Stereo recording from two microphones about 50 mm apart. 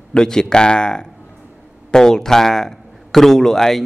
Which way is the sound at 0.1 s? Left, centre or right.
Centre.